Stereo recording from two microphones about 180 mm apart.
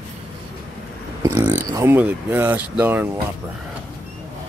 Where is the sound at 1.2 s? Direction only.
15° right (ahead or behind).